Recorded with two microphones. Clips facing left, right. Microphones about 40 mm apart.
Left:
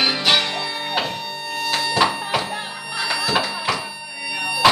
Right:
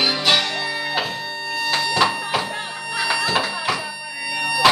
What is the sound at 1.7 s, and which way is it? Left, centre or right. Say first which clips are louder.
Music: even; centre.